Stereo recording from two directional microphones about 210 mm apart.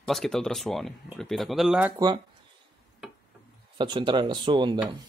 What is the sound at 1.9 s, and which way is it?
Speech, 20° right (ahead or behind).